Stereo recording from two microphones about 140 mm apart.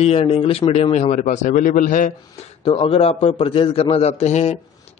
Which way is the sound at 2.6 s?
40° left (ahead or behind).